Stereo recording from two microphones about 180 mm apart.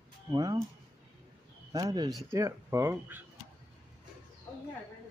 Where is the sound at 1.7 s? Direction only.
25° right (ahead or behind).